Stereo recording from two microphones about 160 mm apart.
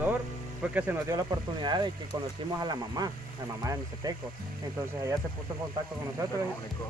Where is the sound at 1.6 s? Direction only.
30° right (ahead or behind).